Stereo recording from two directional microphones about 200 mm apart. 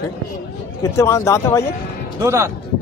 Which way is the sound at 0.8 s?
15° left (ahead or behind).